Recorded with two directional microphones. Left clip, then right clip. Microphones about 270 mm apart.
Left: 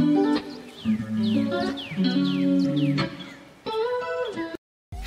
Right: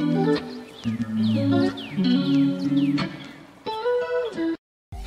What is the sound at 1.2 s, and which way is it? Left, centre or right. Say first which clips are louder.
Music: right 3 dB; centre.